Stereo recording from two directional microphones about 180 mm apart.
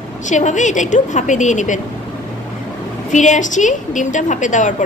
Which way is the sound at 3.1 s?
45° left (ahead or behind).